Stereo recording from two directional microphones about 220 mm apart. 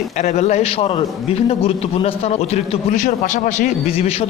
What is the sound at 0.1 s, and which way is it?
A man's voice, 30° left (ahead or behind).